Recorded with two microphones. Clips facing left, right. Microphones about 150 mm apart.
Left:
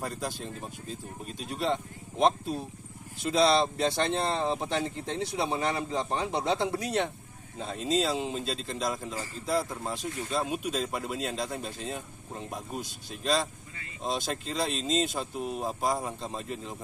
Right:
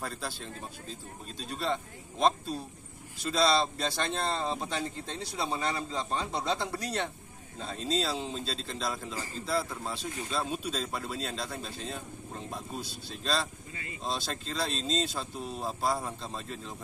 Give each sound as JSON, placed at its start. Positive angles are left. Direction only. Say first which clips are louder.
{"t": 0.0, "sound": "speech", "louder": "left 3 dB", "side_deg": 15}